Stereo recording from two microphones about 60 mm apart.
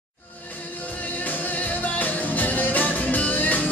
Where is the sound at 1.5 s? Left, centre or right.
Left.